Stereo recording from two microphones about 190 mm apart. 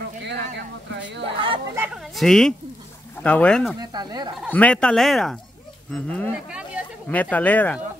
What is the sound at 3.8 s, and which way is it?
Speech, 20° right (ahead or behind).